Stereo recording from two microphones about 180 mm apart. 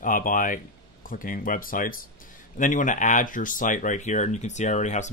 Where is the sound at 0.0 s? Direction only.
50° left (ahead or behind).